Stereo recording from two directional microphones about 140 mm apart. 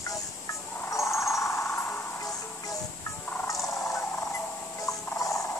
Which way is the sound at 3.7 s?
20° left (ahead or behind).